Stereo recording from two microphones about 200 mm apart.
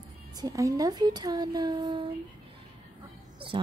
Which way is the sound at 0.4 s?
15° right (ahead or behind).